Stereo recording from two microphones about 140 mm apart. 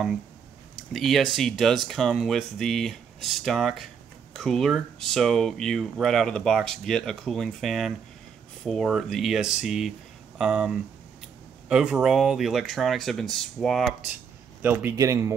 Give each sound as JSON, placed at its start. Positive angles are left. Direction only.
{"t": 0.7, "sound": "speech", "side_deg": 0}
{"t": 14.6, "sound": "speech", "side_deg": -15}